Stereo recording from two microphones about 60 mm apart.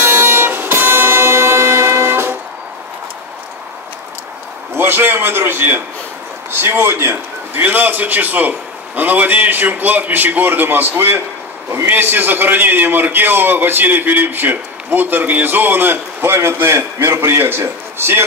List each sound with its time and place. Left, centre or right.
0.0 s music: right
4.7 s a man's voice: right
7.6 s a man's voice: right